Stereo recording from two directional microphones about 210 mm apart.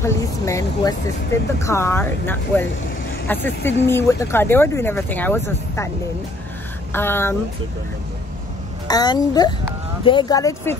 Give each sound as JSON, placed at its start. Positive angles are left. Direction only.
{"t": 0.0, "sound": "speech", "side_deg": 15}
{"t": 6.9, "sound": "speech", "side_deg": 10}
{"t": 8.8, "sound": "a child's voice", "side_deg": 20}